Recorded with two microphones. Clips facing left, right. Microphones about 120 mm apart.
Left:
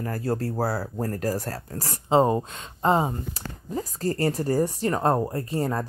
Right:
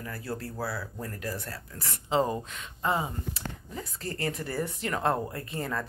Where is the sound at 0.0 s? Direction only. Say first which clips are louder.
Left 9 dB; 40° left (ahead or behind).